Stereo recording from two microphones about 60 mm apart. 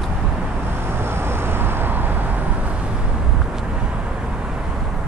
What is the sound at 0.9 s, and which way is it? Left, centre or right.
Vehicle, right.